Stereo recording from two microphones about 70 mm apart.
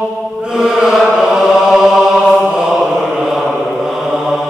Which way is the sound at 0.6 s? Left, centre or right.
Centre.